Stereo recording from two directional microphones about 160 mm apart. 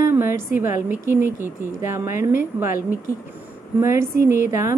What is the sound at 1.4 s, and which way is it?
Speech, 55° left (ahead or behind).